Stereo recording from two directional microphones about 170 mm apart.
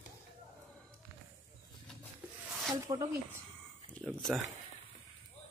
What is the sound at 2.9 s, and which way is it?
Speech, 20° right (ahead or behind).